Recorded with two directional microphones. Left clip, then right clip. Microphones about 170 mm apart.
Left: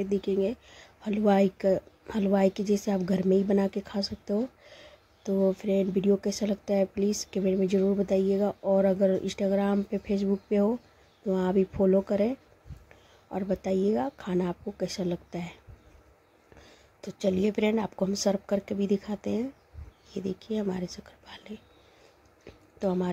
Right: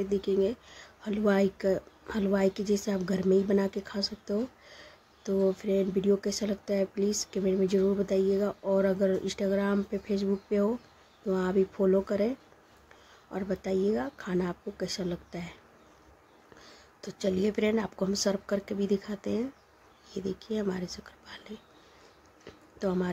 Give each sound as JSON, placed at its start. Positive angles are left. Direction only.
{"t": 0.0, "sound": "speech", "side_deg": 15}
{"t": 17.2, "sound": "speech", "side_deg": 15}
{"t": 22.8, "sound": "speech", "side_deg": 10}